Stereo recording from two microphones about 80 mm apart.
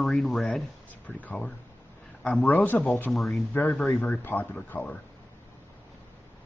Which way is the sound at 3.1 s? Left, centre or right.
Centre.